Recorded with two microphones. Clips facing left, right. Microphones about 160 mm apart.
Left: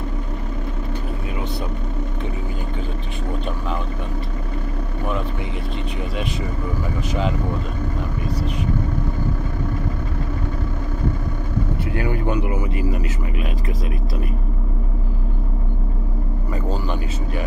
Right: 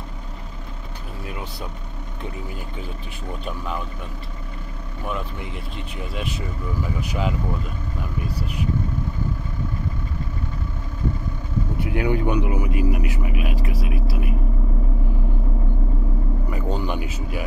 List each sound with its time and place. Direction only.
11.8 s speech: 15° right (ahead or behind)
16.8 s speech: 10° right (ahead or behind)